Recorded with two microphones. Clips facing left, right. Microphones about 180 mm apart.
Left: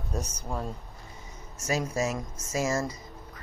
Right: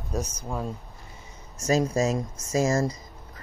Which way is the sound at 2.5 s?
35° right (ahead or behind).